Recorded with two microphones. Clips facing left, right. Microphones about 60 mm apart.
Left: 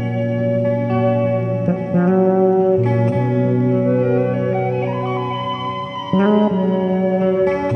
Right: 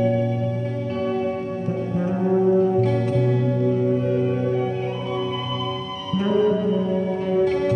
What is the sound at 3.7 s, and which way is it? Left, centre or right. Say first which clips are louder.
Music: left 5 dB; left.